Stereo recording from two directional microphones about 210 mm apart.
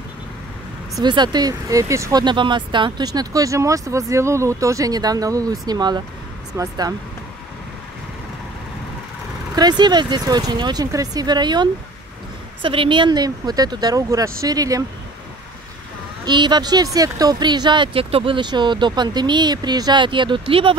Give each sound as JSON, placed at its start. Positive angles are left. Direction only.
{"t": 0.9, "sound": "speech", "side_deg": -20}
{"t": 9.6, "sound": "speech", "side_deg": -20}
{"t": 16.3, "sound": "speech", "side_deg": -20}